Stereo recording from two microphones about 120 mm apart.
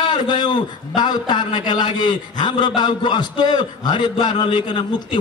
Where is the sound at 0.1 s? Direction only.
40° left (ahead or behind).